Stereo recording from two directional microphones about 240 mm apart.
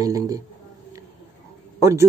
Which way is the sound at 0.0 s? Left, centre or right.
Centre.